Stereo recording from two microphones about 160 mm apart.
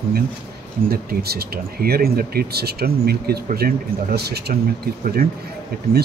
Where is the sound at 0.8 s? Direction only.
75° right (ahead or behind).